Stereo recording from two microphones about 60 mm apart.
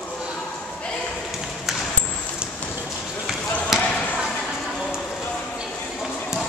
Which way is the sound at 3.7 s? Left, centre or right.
Centre.